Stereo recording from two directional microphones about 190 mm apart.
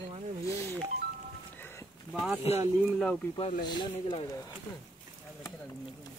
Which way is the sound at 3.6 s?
25° left (ahead or behind).